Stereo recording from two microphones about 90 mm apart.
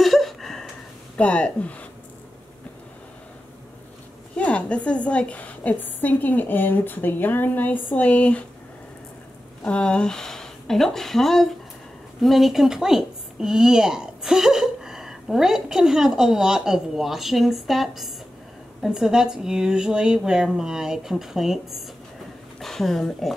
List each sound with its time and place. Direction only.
0.0 s a sound: centre (ahead or behind)
1.1 s speech: 15° left (ahead or behind)
4.4 s a woman's voice: 15° left (ahead or behind)
9.6 s a woman's voice: 15° left (ahead or behind)